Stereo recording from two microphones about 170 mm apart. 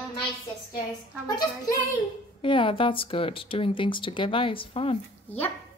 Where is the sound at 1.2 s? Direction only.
20° left (ahead or behind).